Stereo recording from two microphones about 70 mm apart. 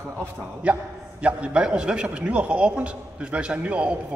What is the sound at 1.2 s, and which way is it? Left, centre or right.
A man's voice, centre.